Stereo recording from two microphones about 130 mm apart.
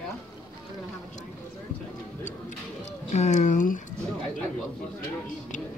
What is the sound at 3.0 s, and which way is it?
Speech, 65° left (ahead or behind).